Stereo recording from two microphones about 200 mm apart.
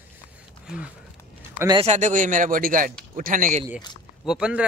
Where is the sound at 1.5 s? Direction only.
20° right (ahead or behind).